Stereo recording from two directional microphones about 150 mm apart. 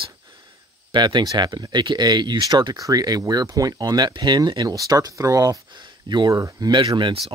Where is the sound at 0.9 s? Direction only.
30° right (ahead or behind).